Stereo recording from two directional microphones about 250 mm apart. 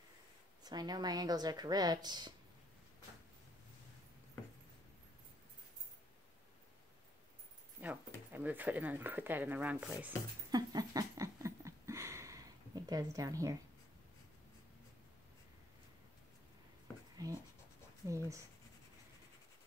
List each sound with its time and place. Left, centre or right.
0.7 s speech: centre
7.8 s keys jangling: centre
8.3 s speech: centre
10.5 s a sound: centre
17.2 s speech: centre